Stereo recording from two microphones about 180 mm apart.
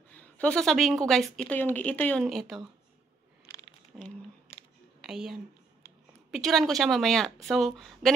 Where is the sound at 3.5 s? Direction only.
20° left (ahead or behind).